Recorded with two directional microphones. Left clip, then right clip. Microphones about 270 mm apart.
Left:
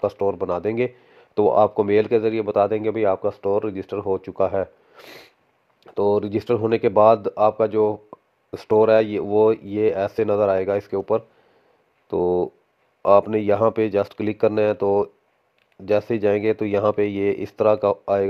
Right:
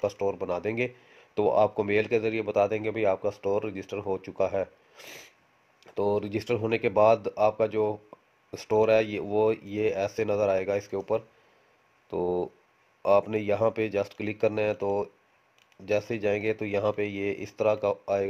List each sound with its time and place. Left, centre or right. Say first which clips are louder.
0.0 s speech: left 7 dB; centre